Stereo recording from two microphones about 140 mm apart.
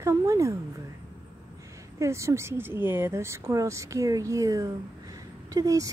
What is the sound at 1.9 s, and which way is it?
Speech, 20° right (ahead or behind).